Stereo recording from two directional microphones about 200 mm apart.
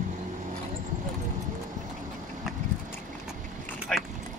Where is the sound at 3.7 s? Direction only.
Centre (ahead or behind).